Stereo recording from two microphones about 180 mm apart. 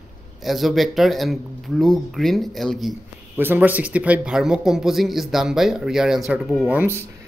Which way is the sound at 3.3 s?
10° right (ahead or behind).